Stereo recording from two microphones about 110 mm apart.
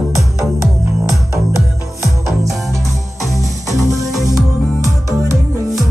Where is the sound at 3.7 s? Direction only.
30° right (ahead or behind).